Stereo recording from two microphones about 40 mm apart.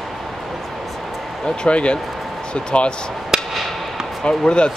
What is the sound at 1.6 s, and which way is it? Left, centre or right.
Speech, left.